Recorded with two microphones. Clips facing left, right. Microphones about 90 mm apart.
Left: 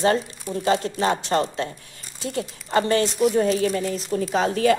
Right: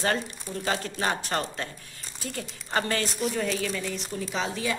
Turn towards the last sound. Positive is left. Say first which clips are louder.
# left 10 dB
turn(degrees=55)  # may be behind; listen again after turning